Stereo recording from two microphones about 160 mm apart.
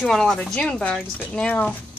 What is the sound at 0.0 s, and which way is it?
Speech, centre (ahead or behind).